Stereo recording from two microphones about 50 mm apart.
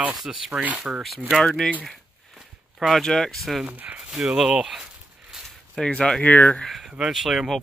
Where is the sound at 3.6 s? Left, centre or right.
Right.